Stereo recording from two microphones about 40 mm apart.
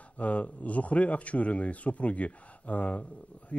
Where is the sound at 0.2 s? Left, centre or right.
Left.